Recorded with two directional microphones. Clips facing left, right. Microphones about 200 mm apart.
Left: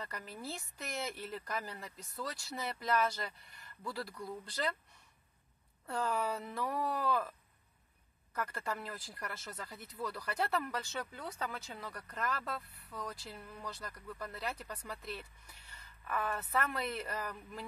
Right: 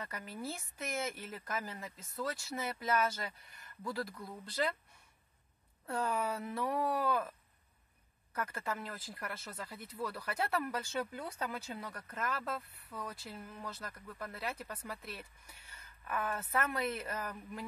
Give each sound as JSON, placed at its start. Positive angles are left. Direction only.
{"t": 0.0, "sound": "speech", "side_deg": -5}
{"t": 4.6, "sound": "speech", "side_deg": -5}
{"t": 5.9, "sound": "speech", "side_deg": -5}